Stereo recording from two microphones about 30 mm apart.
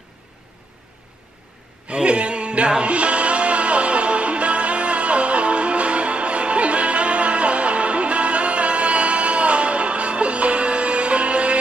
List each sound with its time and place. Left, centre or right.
1.9 s music: right